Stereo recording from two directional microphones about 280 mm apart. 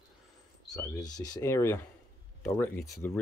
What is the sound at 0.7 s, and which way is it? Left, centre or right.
Speech, centre.